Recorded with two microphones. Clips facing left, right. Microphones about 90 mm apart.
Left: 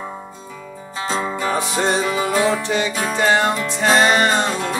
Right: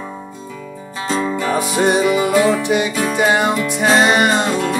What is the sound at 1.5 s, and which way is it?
Music, 5° right (ahead or behind).